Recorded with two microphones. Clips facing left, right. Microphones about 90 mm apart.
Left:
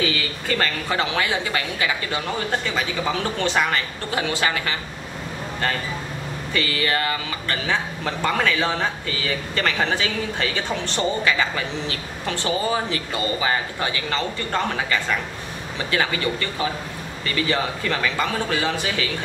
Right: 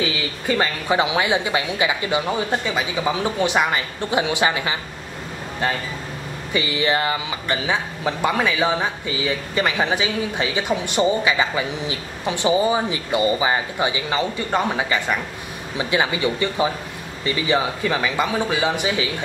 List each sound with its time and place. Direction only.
0.0 s speech: 15° right (ahead or behind)
6.5 s speech: 15° right (ahead or behind)